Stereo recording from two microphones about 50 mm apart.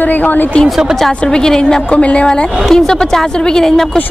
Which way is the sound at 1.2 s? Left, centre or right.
Centre.